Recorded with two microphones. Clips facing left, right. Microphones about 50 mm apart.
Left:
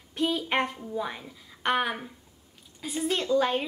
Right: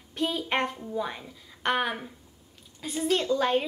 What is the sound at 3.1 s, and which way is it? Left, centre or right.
Speech, centre.